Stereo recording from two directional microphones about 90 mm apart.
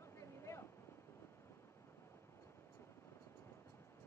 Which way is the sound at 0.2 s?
30° left (ahead or behind).